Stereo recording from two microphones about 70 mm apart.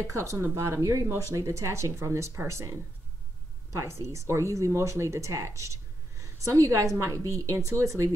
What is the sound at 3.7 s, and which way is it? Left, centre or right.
Speech, right.